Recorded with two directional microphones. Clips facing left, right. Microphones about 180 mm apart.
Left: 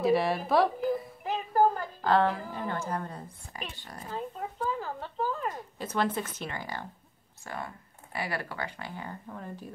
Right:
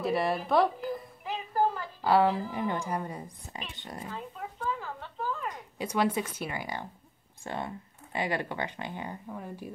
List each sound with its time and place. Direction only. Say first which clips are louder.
0.0 s a woman's voice: left 3 dB; centre (ahead or behind)
1.2 s a sound: left 3 dB; 50° left (ahead or behind)
2.0 s a woman's voice: right 3 dB; 10° right (ahead or behind)
3.5 s speech: right 1 dB; 20° right (ahead or behind)
4.1 s a sound: left 4 dB; 40° left (ahead or behind)
5.8 s a woman's voice: right 2 dB; 10° right (ahead or behind)